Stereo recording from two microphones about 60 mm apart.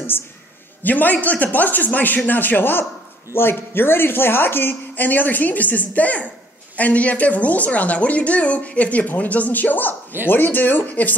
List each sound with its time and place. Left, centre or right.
0.8 s a woman's voice: left